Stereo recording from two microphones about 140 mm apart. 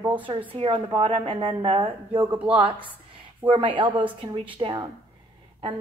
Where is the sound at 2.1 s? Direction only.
10° right (ahead or behind).